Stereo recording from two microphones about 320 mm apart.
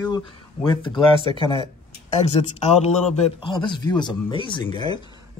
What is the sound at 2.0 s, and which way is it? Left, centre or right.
Speech, left.